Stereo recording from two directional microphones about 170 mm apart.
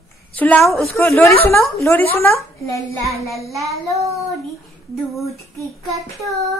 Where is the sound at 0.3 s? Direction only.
10° left (ahead or behind).